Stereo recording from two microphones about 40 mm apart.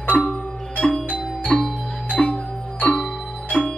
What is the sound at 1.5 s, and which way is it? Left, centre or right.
Music, centre.